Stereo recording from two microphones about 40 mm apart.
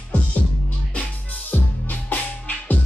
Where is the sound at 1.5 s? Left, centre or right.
Left.